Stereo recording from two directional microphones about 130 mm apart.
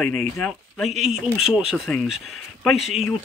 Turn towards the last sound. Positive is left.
turn(degrees=-5)  # may be behind; listen again after turning